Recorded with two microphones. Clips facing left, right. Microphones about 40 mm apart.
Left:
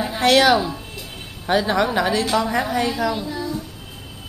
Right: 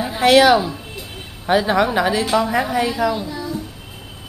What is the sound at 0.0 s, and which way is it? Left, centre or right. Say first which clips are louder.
A woman's voice: right 3 dB; centre.